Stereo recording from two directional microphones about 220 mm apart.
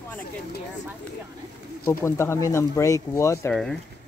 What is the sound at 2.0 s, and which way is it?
Speech, 10° left (ahead or behind).